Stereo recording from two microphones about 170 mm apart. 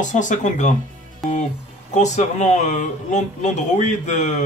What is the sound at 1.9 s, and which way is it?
Speech, 45° left (ahead or behind).